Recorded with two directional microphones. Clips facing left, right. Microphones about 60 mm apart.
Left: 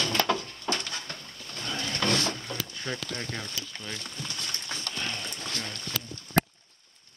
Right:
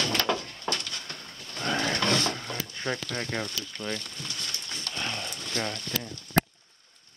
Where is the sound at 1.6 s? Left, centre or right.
Right.